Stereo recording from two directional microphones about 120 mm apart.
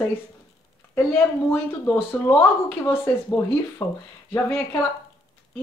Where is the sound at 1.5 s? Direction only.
15° left (ahead or behind).